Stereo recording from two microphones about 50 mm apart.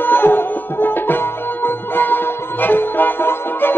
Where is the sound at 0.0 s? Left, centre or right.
Left.